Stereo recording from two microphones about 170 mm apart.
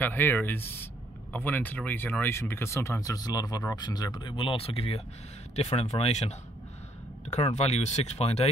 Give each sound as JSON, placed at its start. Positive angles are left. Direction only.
{"t": 0.0, "sound": "speech", "side_deg": 10}